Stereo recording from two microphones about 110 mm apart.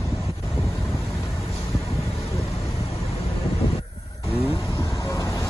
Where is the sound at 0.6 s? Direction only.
25° left (ahead or behind).